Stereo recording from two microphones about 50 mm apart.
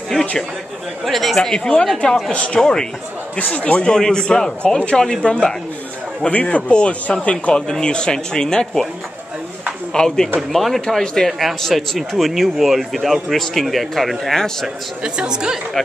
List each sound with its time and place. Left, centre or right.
1.0 s speech: centre
3.3 s speech: left
3.8 s speech: centre
9.9 s speech: centre
15.1 s a woman's voice: centre